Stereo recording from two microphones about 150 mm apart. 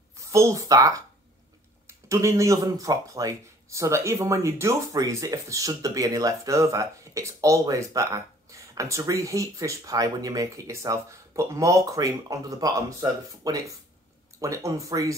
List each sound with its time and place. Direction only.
0.3 s speech: 20° right (ahead or behind)